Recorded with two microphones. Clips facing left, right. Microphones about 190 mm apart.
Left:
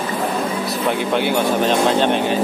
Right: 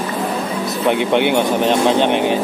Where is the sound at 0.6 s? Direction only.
20° right (ahead or behind).